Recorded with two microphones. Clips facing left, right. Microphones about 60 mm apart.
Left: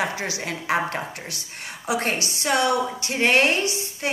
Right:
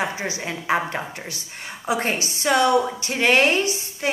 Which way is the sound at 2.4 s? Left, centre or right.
Right.